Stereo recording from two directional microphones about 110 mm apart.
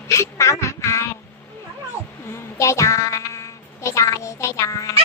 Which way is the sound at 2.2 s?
25° left (ahead or behind).